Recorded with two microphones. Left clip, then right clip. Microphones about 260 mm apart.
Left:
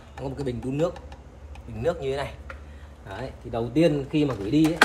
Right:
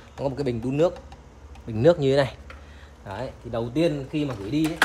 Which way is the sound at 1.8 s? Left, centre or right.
Right.